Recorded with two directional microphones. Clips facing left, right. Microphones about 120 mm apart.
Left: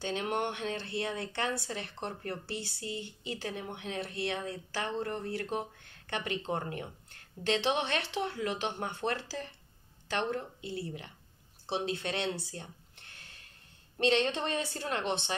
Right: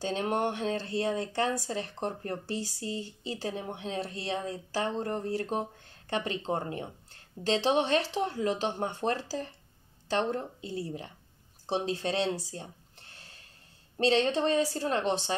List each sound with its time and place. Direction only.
0.0 s speech: 35° right (ahead or behind)